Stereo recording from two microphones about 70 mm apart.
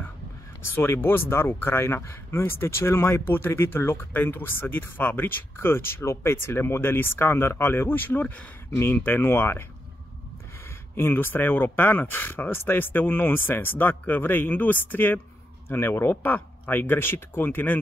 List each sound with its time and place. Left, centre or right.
0.7 s speech: left
11.0 s speech: left